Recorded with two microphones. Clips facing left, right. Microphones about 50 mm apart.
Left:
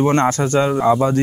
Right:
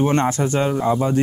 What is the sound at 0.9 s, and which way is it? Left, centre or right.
Speech, left.